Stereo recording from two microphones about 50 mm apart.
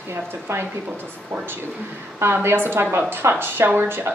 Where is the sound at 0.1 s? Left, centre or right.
Right.